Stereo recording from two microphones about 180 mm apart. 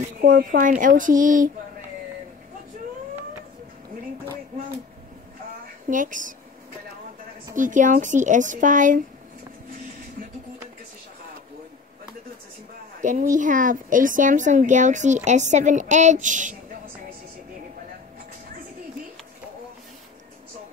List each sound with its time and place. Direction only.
0.2 s a woman's voice: 50° right (ahead or behind)
5.9 s a woman's voice: 45° right (ahead or behind)
7.5 s a woman's voice: 45° right (ahead or behind)
13.0 s a woman's voice: 45° right (ahead or behind)